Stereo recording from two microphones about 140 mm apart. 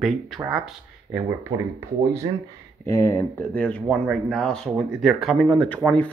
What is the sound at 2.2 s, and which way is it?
Speech, 30° right (ahead or behind).